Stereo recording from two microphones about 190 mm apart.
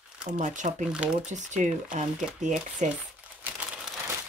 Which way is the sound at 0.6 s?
40° right (ahead or behind).